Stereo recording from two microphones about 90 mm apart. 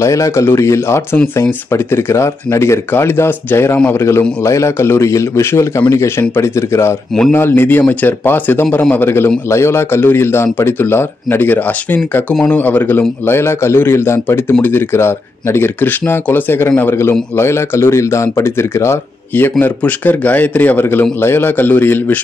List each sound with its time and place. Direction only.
0.0 s a man's voice: 35° left (ahead or behind)